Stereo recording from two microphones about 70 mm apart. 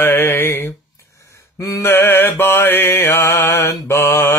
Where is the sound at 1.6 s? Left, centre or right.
Left.